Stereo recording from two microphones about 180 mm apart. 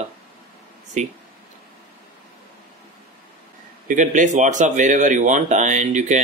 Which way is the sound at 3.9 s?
45° right (ahead or behind).